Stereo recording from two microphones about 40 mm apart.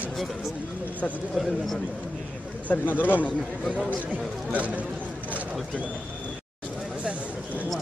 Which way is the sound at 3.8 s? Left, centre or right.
Right.